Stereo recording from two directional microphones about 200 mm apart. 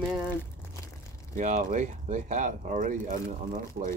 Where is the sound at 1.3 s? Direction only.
40° right (ahead or behind).